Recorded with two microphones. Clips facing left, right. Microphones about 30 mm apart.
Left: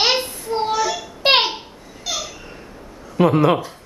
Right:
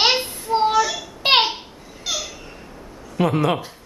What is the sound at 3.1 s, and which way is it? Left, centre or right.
Speech, centre.